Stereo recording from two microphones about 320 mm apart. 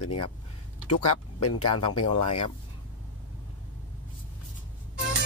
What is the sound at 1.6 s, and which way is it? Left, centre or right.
Speech, centre.